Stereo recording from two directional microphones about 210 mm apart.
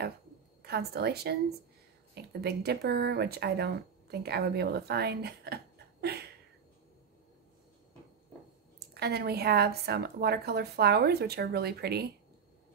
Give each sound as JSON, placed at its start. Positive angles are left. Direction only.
{"t": 0.6, "sound": "a woman's voice", "side_deg": -50}
{"t": 8.7, "sound": "speech", "side_deg": -50}